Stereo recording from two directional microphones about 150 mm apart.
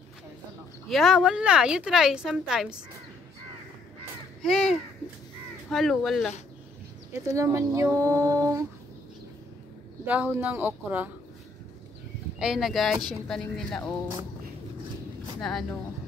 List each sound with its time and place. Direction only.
0.8 s a woman's voice: centre (ahead or behind)
4.4 s a woman's voice: centre (ahead or behind)
7.1 s speech: 20° right (ahead or behind)
10.0 s speech: 10° right (ahead or behind)
12.4 s a woman's voice: 5° right (ahead or behind)
15.4 s a woman's voice: 5° left (ahead or behind)